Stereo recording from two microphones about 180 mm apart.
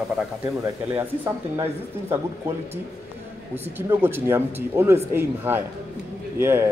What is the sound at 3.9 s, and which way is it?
Speech, 10° right (ahead or behind).